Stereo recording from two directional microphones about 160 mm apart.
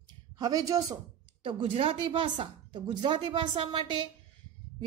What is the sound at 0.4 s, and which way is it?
Speech, 20° right (ahead or behind).